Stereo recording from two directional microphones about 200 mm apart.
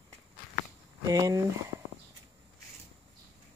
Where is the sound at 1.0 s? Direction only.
20° right (ahead or behind).